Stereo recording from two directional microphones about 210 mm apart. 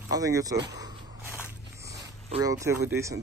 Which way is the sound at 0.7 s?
20° right (ahead or behind).